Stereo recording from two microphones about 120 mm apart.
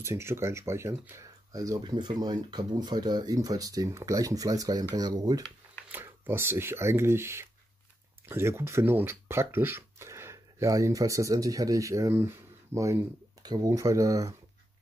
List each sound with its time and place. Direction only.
0.0 s speech: 20° right (ahead or behind)
1.8 s speech: 40° right (ahead or behind)
5.9 s speech: 20° right (ahead or behind)